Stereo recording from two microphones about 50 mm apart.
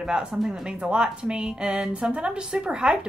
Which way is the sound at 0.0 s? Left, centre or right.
Centre.